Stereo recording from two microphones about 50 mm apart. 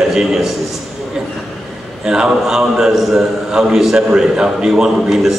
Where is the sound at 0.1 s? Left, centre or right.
Centre.